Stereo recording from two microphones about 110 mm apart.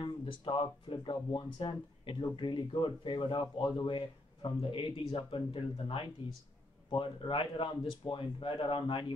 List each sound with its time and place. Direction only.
0.0 s speech: 50° left (ahead or behind)